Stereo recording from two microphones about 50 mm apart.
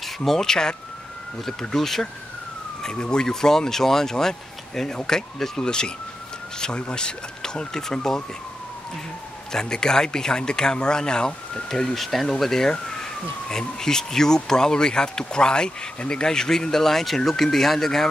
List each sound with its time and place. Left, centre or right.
0.0 s speech: centre
9.5 s speech: centre
11.9 s speech: centre